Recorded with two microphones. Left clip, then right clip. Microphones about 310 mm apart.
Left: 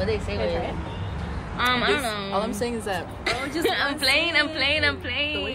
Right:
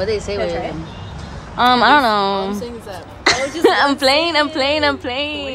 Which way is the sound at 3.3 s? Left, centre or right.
Right.